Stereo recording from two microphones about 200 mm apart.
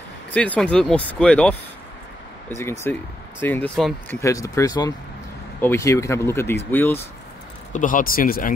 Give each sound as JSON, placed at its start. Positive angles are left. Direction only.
{"t": 0.3, "sound": "speech", "side_deg": 5}
{"t": 7.7, "sound": "speech", "side_deg": 40}